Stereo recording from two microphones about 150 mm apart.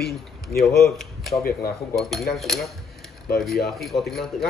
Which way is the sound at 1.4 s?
85° left.